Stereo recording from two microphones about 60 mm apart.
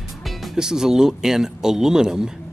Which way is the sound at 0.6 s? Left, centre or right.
Centre.